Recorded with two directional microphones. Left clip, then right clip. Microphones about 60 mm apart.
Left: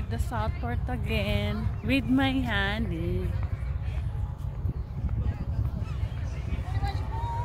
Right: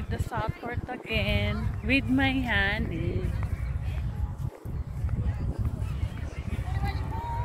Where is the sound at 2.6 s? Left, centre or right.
Left.